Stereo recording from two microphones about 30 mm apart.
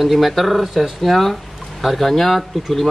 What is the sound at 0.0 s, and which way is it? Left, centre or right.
Speech, centre.